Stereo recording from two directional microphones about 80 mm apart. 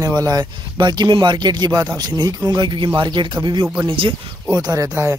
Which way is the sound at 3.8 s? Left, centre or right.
Right.